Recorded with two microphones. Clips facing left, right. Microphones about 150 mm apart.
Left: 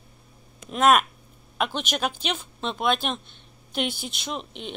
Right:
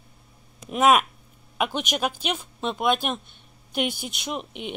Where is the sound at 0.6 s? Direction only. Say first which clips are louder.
Even; 10° right (ahead or behind).